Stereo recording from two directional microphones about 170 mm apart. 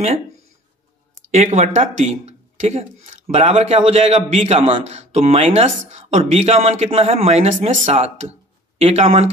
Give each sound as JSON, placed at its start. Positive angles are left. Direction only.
{"t": 1.3, "sound": "speech", "side_deg": -40}